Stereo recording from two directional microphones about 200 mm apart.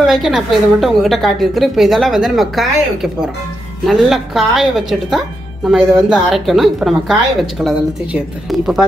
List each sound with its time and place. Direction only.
0.0 s speech: centre (ahead or behind)